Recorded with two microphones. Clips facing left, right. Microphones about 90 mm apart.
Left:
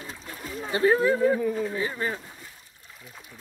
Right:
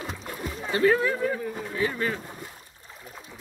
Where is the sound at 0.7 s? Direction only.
25° left (ahead or behind).